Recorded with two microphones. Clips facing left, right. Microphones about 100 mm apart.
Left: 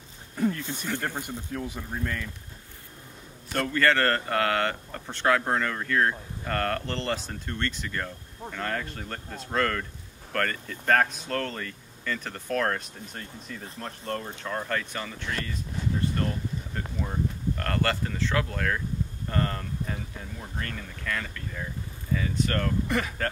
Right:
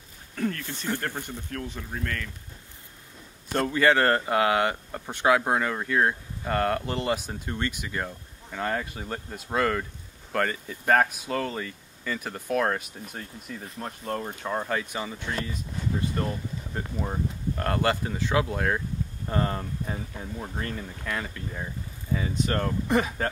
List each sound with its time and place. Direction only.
0.4 s speech: 15° left (ahead or behind)
3.5 s speech: 15° right (ahead or behind)